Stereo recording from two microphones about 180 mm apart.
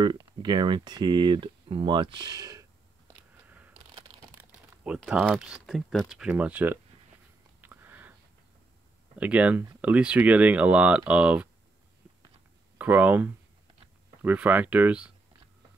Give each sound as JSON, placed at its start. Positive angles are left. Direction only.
{"t": 0.0, "sound": "speech", "side_deg": -25}
{"t": 3.4, "sound": "a sound", "side_deg": -10}
{"t": 4.4, "sound": "speech", "side_deg": -5}
{"t": 7.6, "sound": "a sound", "side_deg": -10}
{"t": 9.2, "sound": "speech", "side_deg": -10}
{"t": 12.7, "sound": "speech", "side_deg": -10}